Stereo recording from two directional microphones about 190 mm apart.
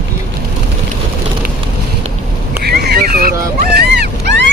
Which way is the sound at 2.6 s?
55° right (ahead or behind).